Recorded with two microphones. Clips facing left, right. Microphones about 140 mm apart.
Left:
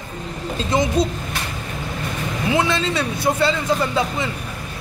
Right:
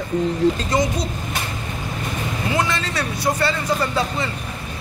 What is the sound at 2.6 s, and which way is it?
Speech, 20° left (ahead or behind).